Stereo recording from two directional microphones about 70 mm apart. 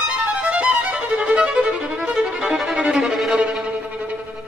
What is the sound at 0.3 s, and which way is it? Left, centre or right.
Violin, centre.